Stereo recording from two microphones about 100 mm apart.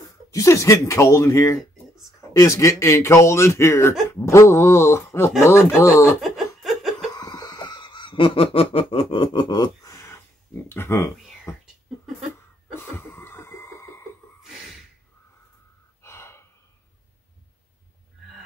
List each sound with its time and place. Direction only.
0.3 s speech: 30° left (ahead or behind)
5.7 s speech: 10° right (ahead or behind)
6.0 s laughter: 5° right (ahead or behind)
7.2 s a sound: 40° left (ahead or behind); by 11.5 s 25° left (ahead or behind)
12.9 s music: 25° left (ahead or behind)
16.0 s gasp: 30° left (ahead or behind)